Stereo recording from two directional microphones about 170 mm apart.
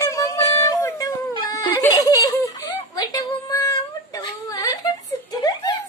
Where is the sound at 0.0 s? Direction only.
20° left (ahead or behind).